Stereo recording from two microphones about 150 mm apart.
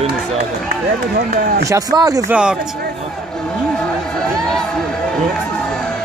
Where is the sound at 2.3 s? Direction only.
5° right (ahead or behind).